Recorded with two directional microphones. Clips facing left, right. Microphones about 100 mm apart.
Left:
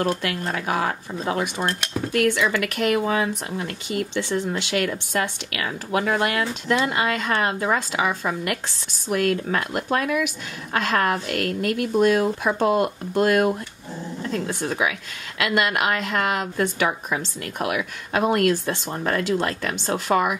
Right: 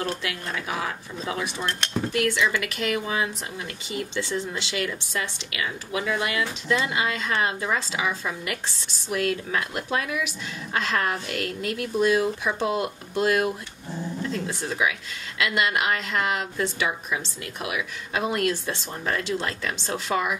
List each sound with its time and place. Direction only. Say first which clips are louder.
0.0 s speech: left 6 dB; 55° left (ahead or behind)